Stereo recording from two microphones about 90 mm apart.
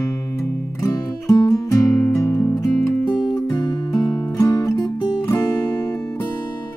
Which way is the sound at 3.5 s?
55° left (ahead or behind).